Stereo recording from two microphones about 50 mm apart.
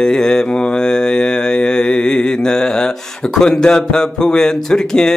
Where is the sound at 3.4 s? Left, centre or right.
Centre.